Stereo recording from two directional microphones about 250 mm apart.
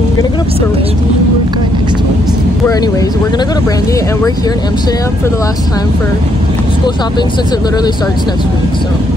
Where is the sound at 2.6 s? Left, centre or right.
Centre.